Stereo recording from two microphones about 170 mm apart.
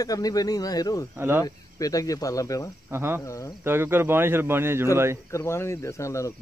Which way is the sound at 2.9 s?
15° right (ahead or behind).